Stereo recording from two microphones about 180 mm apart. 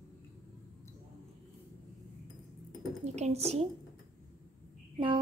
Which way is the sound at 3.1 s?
35° right (ahead or behind).